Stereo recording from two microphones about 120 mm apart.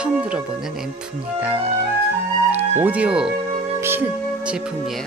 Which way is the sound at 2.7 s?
15° right (ahead or behind).